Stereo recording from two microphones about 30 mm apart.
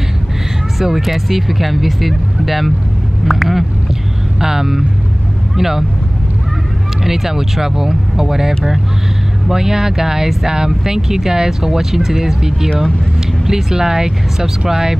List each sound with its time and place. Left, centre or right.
0.7 s speech: centre
7.1 s speech: centre